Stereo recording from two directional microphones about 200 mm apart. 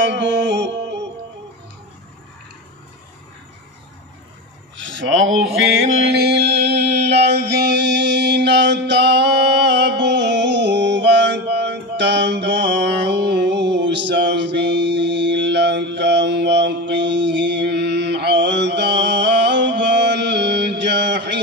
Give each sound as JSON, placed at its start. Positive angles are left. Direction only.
{"t": 0.0, "sound": "music", "side_deg": -60}
{"t": 4.7, "sound": "a sound", "side_deg": -65}
{"t": 6.1, "sound": "music", "side_deg": -55}